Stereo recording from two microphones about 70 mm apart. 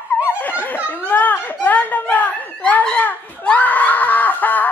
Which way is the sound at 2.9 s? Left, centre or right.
Left.